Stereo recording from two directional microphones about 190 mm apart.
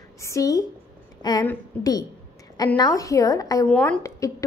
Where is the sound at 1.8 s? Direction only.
20° left (ahead or behind).